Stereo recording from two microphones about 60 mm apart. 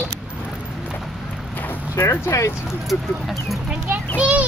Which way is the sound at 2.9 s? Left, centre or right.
Centre.